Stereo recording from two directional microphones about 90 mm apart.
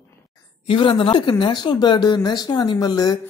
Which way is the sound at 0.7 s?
70° left (ahead or behind).